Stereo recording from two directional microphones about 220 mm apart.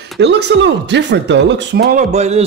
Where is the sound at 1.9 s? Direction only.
30° right (ahead or behind).